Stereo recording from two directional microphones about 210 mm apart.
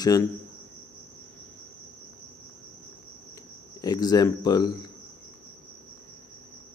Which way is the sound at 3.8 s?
20° left (ahead or behind).